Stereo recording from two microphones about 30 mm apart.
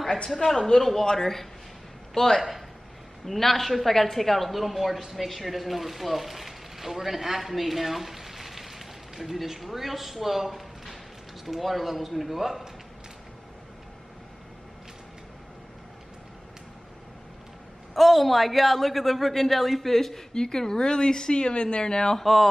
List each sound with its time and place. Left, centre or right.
0.3 s a woman's voice: centre
0.6 s a woman's voice: centre
17.9 s a woman's voice: centre
20.3 s speech: left
22.2 s a woman's voice: centre